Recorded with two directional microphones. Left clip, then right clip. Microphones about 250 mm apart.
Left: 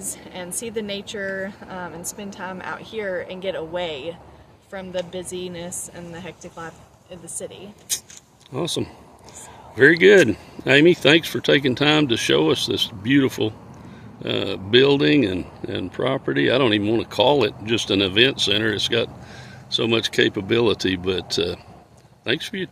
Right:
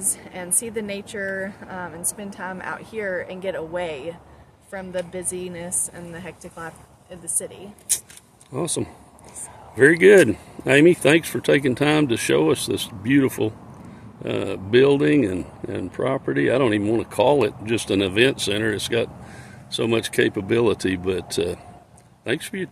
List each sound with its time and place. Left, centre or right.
0.1 s speech: centre